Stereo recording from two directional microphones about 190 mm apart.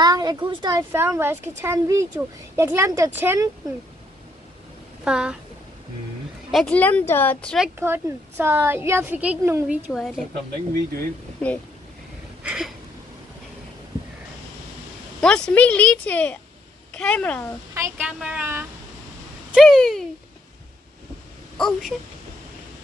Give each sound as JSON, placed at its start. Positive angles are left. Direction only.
{"t": 0.0, "sound": "a woman's voice", "side_deg": -20}
{"t": 5.0, "sound": "speech", "side_deg": -5}
{"t": 6.5, "sound": "speech", "side_deg": 5}
{"t": 7.7, "sound": "a woman's voice", "side_deg": -10}
{"t": 11.4, "sound": "speech", "side_deg": 5}
{"t": 15.1, "sound": "speech", "side_deg": 5}
{"t": 17.7, "sound": "a woman's voice", "side_deg": -10}
{"t": 19.5, "sound": "speech", "side_deg": 0}
{"t": 21.5, "sound": "speech", "side_deg": 5}